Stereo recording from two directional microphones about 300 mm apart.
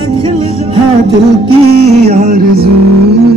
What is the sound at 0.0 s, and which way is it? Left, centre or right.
Music, centre.